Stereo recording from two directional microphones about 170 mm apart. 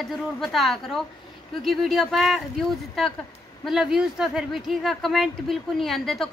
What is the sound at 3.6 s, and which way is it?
Speech, centre (ahead or behind).